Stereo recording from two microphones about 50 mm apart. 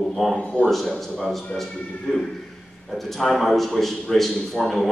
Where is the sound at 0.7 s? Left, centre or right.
Centre.